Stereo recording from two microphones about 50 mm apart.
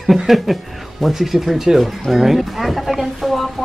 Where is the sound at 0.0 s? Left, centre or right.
Centre.